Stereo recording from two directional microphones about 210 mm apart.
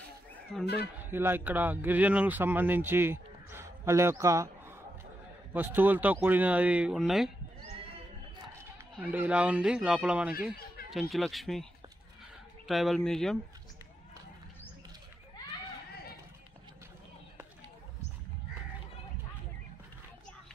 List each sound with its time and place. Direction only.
0.5 s speech: centre (ahead or behind)
1.1 s speech: 10° right (ahead or behind)
8.9 s speech: 5° right (ahead or behind)
12.6 s speech: centre (ahead or behind)